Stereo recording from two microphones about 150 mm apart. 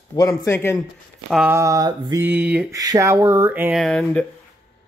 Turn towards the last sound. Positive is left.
turn(degrees=5)  # may be behind; listen again after turning